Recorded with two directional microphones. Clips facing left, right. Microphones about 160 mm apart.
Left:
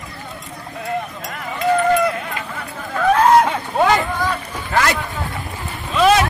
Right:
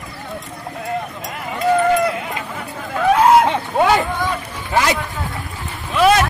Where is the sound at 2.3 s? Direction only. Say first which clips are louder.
Right 1 dB; 15° right (ahead or behind).